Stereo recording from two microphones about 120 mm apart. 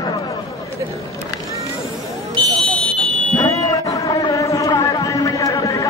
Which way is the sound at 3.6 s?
30° left (ahead or behind).